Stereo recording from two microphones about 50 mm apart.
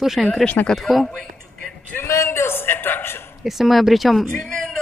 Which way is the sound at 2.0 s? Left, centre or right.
Left.